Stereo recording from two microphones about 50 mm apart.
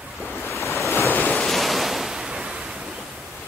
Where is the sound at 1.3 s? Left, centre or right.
Centre.